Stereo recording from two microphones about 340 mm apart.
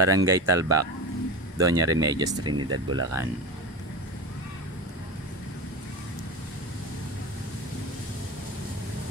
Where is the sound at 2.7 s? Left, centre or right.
Right.